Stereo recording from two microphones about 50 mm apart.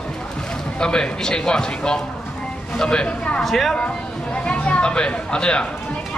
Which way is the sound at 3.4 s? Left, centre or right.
Centre.